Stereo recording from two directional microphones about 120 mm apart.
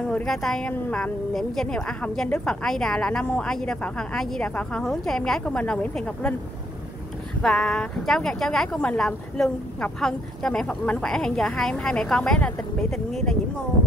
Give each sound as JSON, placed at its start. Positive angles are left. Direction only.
{"t": 0.0, "sound": "a woman's voice", "side_deg": 5}
{"t": 7.4, "sound": "speech", "side_deg": 5}